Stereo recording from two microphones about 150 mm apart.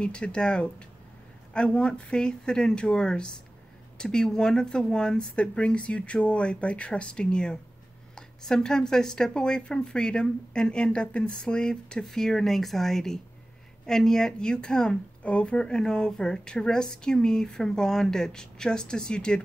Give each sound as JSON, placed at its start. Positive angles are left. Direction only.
{"t": 0.0, "sound": "speech", "side_deg": 5}